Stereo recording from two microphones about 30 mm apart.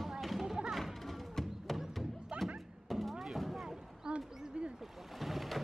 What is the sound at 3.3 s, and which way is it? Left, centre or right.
Artillery fire, centre.